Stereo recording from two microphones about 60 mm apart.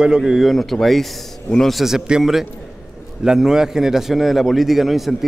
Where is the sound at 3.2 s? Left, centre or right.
Centre.